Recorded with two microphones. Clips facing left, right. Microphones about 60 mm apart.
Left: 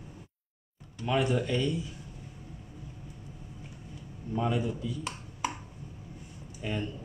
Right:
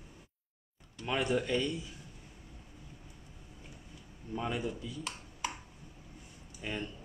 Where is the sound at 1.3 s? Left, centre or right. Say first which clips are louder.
Left 2 dB; centre.